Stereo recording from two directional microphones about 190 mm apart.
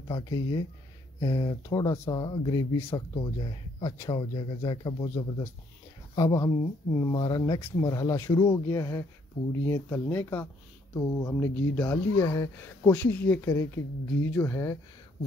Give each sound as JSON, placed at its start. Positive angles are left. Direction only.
{"t": 0.1, "sound": "speech", "side_deg": 20}